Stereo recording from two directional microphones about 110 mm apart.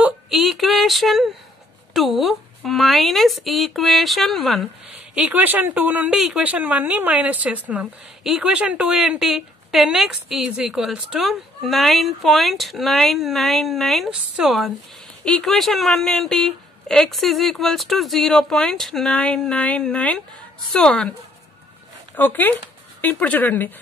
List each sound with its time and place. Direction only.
0.3 s a woman's voice: centre (ahead or behind)
5.1 s speech: 10° right (ahead or behind)
6.1 s a woman's voice: 5° right (ahead or behind)
22.1 s speech: 15° left (ahead or behind)